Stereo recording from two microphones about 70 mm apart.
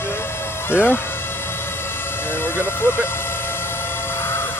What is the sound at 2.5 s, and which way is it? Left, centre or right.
Speech, left.